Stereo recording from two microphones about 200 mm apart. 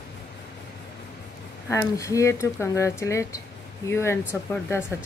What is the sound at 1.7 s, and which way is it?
Speech, 15° left (ahead or behind).